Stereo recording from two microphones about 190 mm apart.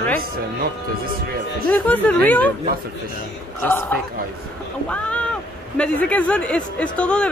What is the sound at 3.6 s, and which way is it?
Speech, 10° left (ahead or behind).